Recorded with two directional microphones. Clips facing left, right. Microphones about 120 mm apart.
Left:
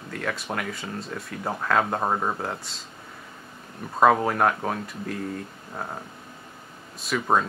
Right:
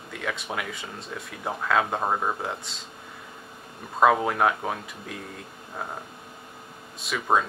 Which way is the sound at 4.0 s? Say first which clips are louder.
Left 1 dB; centre (ahead or behind).